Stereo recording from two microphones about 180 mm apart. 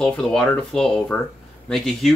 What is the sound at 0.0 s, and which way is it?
Speech, 5° left (ahead or behind).